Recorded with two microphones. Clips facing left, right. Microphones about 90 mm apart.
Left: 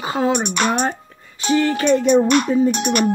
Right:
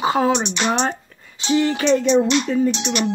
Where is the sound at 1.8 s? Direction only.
50° left (ahead or behind).